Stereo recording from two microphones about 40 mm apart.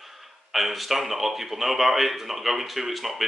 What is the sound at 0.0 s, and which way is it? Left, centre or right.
Speech, centre.